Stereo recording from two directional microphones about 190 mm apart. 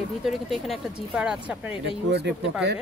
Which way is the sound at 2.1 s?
60° right (ahead or behind).